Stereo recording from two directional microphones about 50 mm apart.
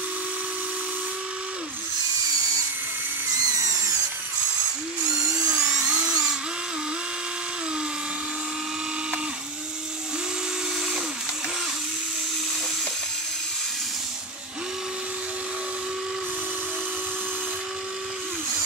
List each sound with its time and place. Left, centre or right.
5.5 s dental drill: right